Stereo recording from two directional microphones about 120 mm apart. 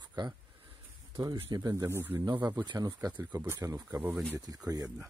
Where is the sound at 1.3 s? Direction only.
35° right (ahead or behind).